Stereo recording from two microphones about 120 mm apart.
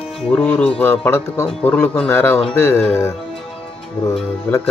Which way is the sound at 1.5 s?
10° left (ahead or behind).